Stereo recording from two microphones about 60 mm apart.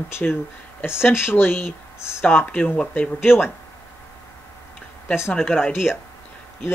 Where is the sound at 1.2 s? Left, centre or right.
Left.